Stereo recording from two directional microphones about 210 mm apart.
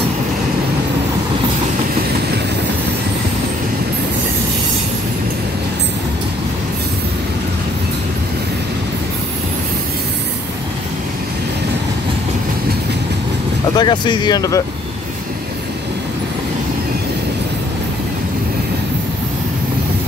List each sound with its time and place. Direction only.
13.7 s speech: 20° left (ahead or behind)